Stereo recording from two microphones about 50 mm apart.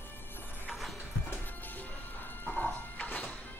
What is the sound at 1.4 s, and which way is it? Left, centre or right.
Music, left.